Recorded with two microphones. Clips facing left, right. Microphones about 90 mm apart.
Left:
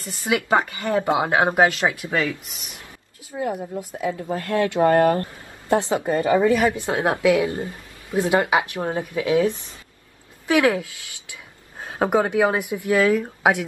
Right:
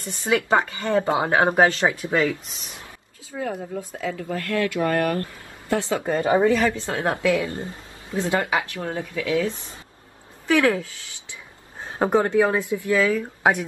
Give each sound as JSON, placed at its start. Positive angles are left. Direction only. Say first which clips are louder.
{"t": 0.0, "sound": "a woman's voice", "louder": "right 1 dB", "side_deg": -35}
{"t": 0.5, "sound": "a woman's voice", "louder": "even", "side_deg": 15}
{"t": 1.7, "sound": "speech", "louder": "right 1 dB", "side_deg": -30}
{"t": 3.3, "sound": "a woman's voice", "louder": "left 2 dB", "side_deg": 20}
{"t": 6.1, "sound": "speech", "louder": "even", "side_deg": -25}
{"t": 6.5, "sound": "a woman's voice", "louder": "left 2 dB", "side_deg": 15}